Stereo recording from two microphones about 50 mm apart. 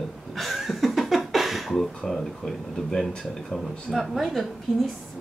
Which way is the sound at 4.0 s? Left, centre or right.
Centre.